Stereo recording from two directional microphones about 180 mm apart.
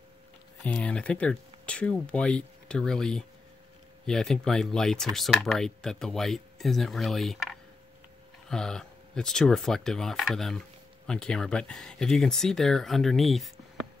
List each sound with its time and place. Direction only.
0.7 s speech: 5° left (ahead or behind)